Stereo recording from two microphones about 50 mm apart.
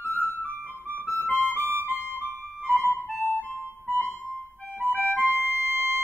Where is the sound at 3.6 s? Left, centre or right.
Right.